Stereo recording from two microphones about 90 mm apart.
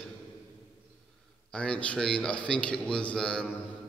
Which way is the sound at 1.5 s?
10° left (ahead or behind).